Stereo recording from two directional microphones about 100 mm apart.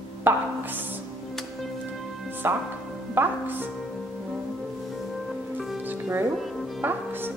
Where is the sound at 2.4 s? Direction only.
20° right (ahead or behind).